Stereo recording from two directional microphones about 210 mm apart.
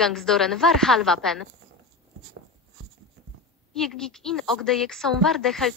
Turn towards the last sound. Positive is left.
turn(degrees=0)  # may be behind; listen again after turning